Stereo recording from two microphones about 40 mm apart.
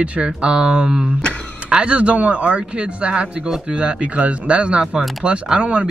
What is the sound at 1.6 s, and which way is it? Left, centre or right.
Speech, right.